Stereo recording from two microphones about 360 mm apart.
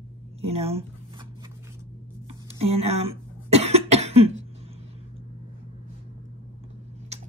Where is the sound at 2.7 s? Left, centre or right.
Centre.